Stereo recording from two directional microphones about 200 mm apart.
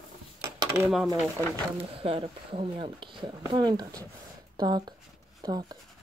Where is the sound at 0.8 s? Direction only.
Centre (ahead or behind).